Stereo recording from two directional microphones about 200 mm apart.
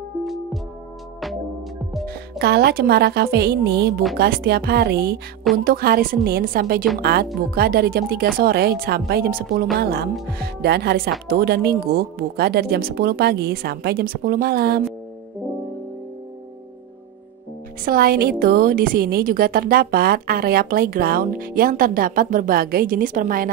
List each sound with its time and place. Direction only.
0.2 s music: centre (ahead or behind)
2.0 s a woman's voice: 55° right (ahead or behind)
17.8 s a woman's voice: 45° right (ahead or behind)